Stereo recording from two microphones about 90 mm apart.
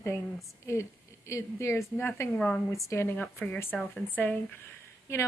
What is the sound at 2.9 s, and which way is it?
Speech, 25° left (ahead or behind).